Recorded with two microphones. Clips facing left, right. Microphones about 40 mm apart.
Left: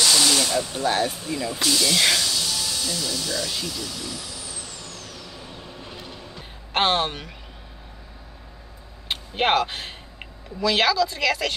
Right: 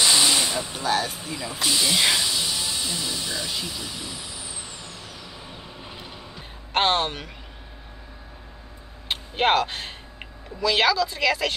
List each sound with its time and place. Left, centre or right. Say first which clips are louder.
0.0 s a sound: even; centre
1.0 s snake: left 5 dB; centre
6.7 s speech: even; centre
9.1 s speech: even; centre